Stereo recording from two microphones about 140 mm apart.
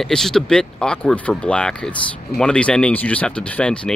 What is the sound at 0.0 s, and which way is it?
Speech, 5° left (ahead or behind).